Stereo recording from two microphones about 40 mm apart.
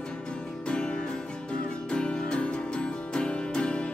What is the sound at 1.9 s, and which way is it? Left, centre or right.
Music, left.